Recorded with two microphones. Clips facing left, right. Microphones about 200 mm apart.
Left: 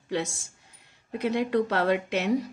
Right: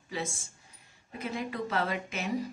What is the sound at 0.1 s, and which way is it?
A woman's voice, 80° left.